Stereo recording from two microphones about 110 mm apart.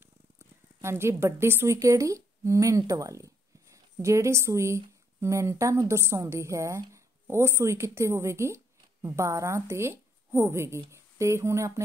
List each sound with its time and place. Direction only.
0.7 s speech: 25° right (ahead or behind)
2.8 s a sound: 30° right (ahead or behind)
4.0 s a woman's voice: 25° right (ahead or behind)